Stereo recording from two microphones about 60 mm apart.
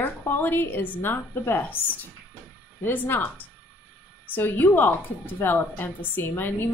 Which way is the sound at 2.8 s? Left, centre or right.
Left.